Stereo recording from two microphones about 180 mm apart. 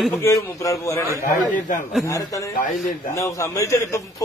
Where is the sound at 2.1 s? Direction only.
20° left (ahead or behind).